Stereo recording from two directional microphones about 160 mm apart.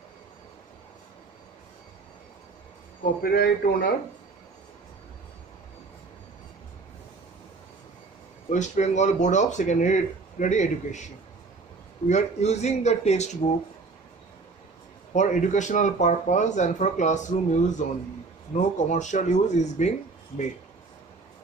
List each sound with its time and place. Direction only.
3.2 s speech: 70° left (ahead or behind)
8.5 s speech: 50° left (ahead or behind)
12.1 s speech: 45° left (ahead or behind)
15.1 s speech: 50° left (ahead or behind)